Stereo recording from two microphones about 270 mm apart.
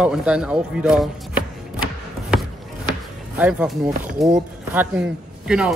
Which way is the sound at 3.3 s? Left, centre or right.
Centre.